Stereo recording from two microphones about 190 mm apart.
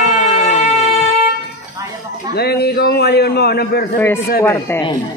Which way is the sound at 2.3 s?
60° left (ahead or behind).